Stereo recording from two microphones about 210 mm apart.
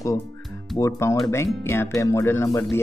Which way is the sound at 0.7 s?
15° left (ahead or behind).